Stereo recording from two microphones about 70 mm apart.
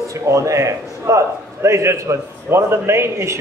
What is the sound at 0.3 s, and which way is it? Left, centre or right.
A man's voice, right.